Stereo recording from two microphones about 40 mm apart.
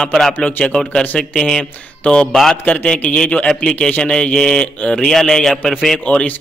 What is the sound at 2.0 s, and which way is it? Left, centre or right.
A man's voice, left.